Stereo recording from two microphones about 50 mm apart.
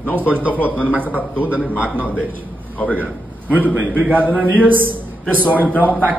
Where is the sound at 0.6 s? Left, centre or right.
Left.